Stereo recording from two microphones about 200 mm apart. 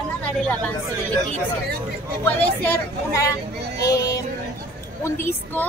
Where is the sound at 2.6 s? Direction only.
15° left (ahead or behind).